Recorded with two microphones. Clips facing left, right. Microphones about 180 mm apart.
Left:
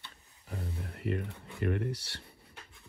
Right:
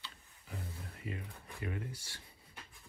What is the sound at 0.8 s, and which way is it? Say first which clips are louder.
Music: left 13 dB; 65° left (ahead or behind).